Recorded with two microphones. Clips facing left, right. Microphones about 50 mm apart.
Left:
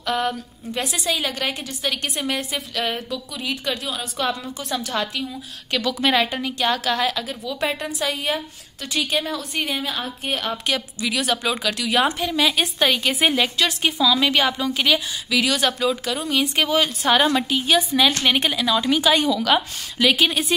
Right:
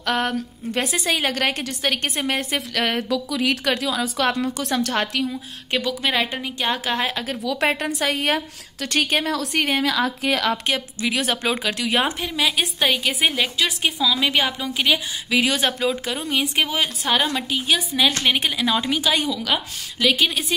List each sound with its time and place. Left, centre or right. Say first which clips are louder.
0.0 s a woman's voice: right 1 dB; right
0.8 s a woman's voice: left 1 dB; right
1.1 s a woman's voice: right 4 dB; right
5.3 s speech: right 1 dB; right
5.9 s a woman's voice: left 4 dB; centre
6.7 s speech: left 1 dB; right
7.6 s a woman's voice: right 2 dB; right
9.2 s a woman's voice: right 4 dB; right
10.7 s a woman's voice: right 1 dB; right
12.0 s a woman's voice: left 2 dB; centre
15.2 s speech: right 1 dB; right
16.2 s a woman's voice: left 1 dB; centre
17.0 s a woman's voice: left 4 dB; centre